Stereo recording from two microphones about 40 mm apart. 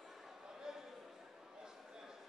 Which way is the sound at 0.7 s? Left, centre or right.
Centre.